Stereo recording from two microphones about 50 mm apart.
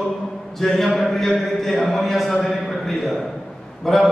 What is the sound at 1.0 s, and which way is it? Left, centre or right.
A man's voice, centre.